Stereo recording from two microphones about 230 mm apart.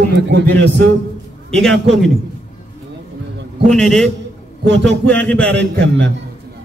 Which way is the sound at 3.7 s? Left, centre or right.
Centre.